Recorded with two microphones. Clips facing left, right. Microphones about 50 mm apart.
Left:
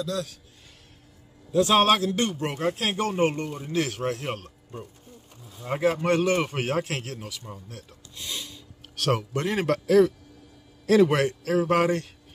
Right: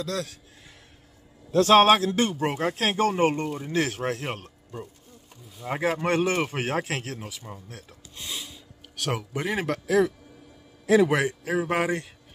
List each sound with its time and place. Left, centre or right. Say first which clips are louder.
0.0 s a man's voice: left 1 dB; right
1.7 s speech: right 5 dB; right
2.8 s speech: right 3 dB; right
5.7 s a man's voice: left 2 dB; right
8.3 s a man's voice: left 1 dB; centre